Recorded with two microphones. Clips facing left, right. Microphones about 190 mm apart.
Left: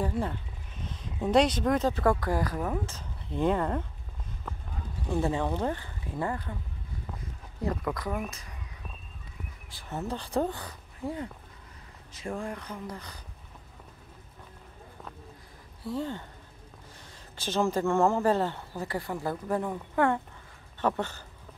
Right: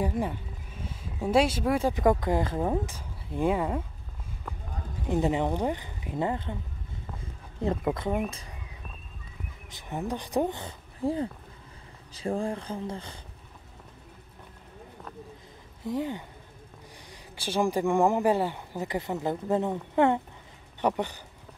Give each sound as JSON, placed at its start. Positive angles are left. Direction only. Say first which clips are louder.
{"t": 0.0, "sound": "speech", "louder": "right 2 dB", "side_deg": -15}
{"t": 2.9, "sound": "speech", "louder": "even", "side_deg": -10}
{"t": 5.1, "sound": "speech", "louder": "right 2 dB", "side_deg": -20}
{"t": 7.6, "sound": "speech", "louder": "right 3 dB", "side_deg": -25}
{"t": 9.7, "sound": "speech", "louder": "right 2 dB", "side_deg": -15}
{"t": 15.8, "sound": "speech", "louder": "right 2 dB", "side_deg": -15}